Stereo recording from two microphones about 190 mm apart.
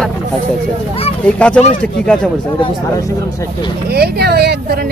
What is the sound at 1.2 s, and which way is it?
Speech, 5° left (ahead or behind).